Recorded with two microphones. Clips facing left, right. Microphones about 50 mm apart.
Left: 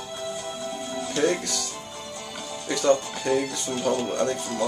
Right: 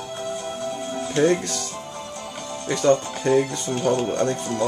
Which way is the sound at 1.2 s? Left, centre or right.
Right.